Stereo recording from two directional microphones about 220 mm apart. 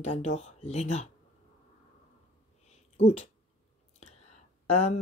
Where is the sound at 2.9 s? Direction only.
30° left (ahead or behind).